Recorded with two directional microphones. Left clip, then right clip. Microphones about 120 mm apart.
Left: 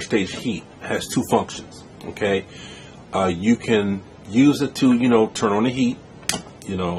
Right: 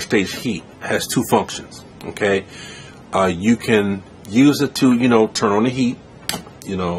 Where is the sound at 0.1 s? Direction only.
25° right (ahead or behind).